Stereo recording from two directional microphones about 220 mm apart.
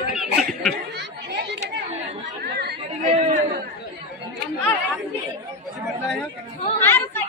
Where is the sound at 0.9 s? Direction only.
50° right (ahead or behind).